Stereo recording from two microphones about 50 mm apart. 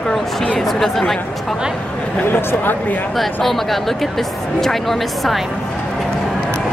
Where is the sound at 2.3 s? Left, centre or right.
Left.